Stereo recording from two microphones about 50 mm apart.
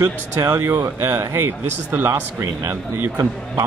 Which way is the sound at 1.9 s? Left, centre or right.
Right.